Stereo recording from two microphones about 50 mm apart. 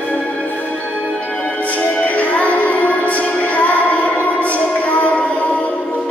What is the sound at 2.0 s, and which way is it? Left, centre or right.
Music, left.